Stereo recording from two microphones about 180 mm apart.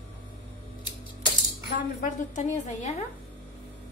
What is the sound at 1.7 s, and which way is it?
A woman's voice, 45° left (ahead or behind).